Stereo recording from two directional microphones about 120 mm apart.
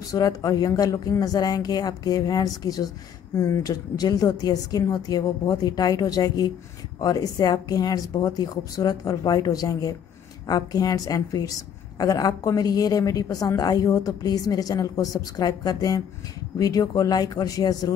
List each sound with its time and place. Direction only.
0.0 s a woman's voice: 30° left (ahead or behind)